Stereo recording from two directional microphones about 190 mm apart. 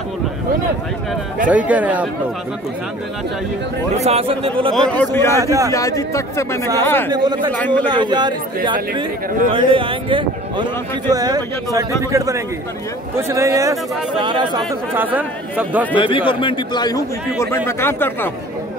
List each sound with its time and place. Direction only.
1.5 s speech: 10° right (ahead or behind)
3.9 s speech: 35° right (ahead or behind)
4.7 s speech: 10° left (ahead or behind)
5.4 s speech: 15° right (ahead or behind)
5.7 s speech: 15° left (ahead or behind)
7.1 s speech: 20° right (ahead or behind)
7.5 s speech: 10° left (ahead or behind)
7.9 s speech: 25° right (ahead or behind)
15.0 s speech: 10° right (ahead or behind)
16.0 s a man's voice: 25° left (ahead or behind); by 18.3 s 10° left (ahead or behind)